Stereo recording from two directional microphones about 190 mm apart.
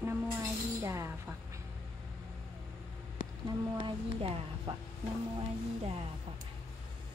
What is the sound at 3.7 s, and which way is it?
Speech, 30° right (ahead or behind).